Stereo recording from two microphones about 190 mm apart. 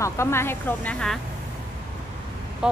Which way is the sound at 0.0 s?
15° left (ahead or behind).